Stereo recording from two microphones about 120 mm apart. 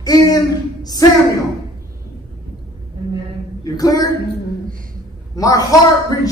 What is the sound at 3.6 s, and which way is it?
Speech, 30° left (ahead or behind).